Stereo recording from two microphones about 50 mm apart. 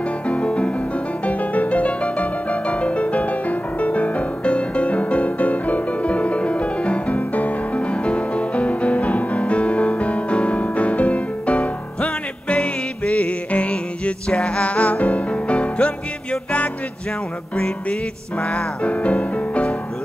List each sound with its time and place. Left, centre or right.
0.3 s music: left
18.4 s music: left